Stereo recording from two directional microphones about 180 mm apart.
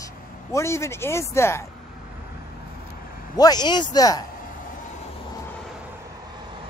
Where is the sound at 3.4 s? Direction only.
20° left (ahead or behind).